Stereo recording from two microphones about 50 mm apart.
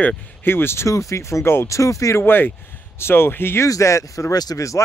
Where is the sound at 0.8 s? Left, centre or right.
Left.